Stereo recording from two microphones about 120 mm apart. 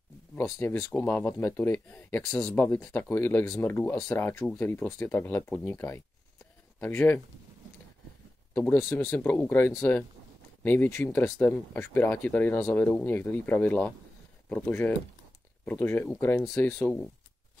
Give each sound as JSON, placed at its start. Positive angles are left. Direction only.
{"t": 0.4, "sound": "speech", "side_deg": 20}
{"t": 8.5, "sound": "speech", "side_deg": 20}